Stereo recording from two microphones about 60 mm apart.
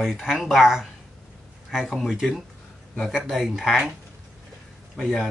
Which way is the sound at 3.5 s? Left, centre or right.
Centre.